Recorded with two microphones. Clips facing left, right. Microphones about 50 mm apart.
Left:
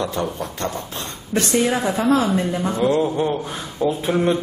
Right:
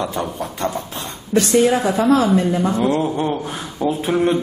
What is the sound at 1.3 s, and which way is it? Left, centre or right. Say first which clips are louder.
Speech: right 4 dB; left.